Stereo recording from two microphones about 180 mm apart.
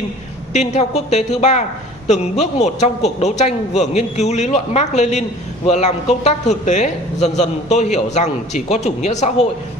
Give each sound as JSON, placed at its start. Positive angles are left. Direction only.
{"t": 0.5, "sound": "speech", "side_deg": 40}